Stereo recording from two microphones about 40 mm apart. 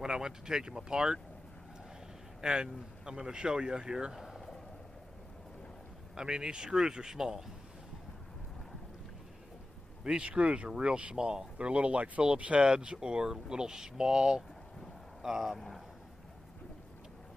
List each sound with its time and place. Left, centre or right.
0.0 s speech: centre
2.4 s speech: centre
4.2 s a sound: centre
6.1 s a man's voice: centre
10.0 s speech: right
15.2 s speech: centre